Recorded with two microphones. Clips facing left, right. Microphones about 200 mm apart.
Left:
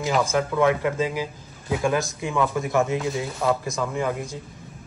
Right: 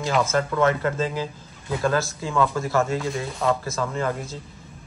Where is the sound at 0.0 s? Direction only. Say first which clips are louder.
Even; 15° left (ahead or behind).